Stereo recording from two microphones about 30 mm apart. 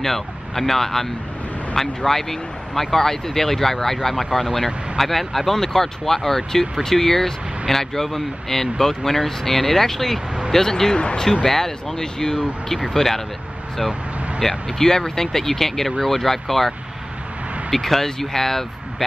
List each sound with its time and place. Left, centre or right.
0.0 s speech: centre
2.0 s speech: centre
4.2 s speech: centre
14.4 s speech: centre